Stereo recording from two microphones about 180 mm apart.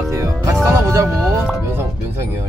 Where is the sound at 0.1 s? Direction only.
15° right (ahead or behind).